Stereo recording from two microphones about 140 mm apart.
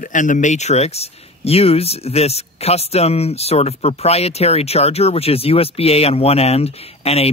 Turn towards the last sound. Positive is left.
turn(degrees=45)  # may be behind; listen again after turning